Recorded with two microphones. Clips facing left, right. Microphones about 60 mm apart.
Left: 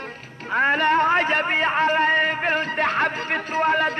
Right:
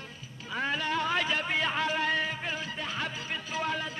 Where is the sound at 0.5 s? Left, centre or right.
Left.